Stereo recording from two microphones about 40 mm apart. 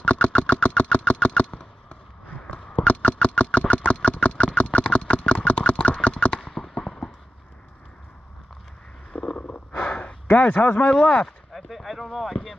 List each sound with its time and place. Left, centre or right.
0.0 s vehicle: left
2.7 s engine: left
6.5 s fireworks: centre
9.1 s snort: left
9.5 s snort: left
10.4 s a man's voice: left
11.1 s a sound: centre